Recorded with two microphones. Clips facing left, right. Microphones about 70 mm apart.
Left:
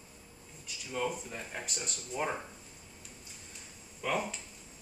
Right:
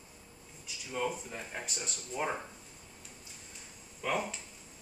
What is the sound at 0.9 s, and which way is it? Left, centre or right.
Speech, centre.